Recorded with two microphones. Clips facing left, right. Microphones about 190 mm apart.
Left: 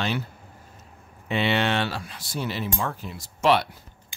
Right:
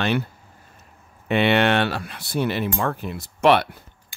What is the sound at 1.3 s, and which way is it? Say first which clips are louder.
Speech: right 5 dB; 60° right (ahead or behind).